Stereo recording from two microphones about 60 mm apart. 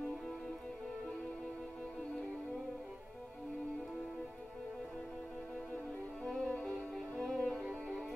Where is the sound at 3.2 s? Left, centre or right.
Centre.